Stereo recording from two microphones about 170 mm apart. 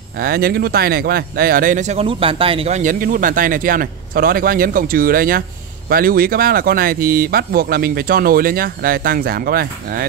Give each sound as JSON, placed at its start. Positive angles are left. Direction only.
{"t": 0.2, "sound": "speech", "side_deg": -65}
{"t": 2.8, "sound": "speech", "side_deg": -50}